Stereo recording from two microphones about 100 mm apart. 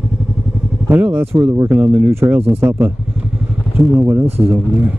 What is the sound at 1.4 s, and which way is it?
Speech, 35° right (ahead or behind).